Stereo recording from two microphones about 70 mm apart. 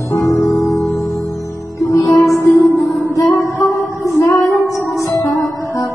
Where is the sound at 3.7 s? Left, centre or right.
Left.